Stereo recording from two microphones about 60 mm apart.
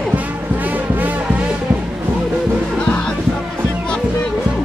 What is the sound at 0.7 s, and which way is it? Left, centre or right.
Music, right.